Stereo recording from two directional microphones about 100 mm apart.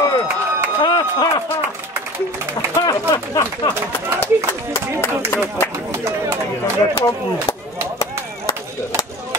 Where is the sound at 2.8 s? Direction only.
35° left (ahead or behind).